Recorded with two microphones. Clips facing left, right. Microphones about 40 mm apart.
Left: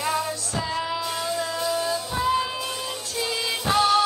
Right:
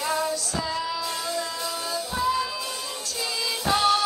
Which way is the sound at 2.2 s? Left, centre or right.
Left.